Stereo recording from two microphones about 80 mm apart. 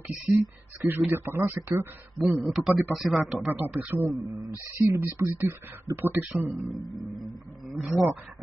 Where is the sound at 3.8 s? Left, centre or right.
Right.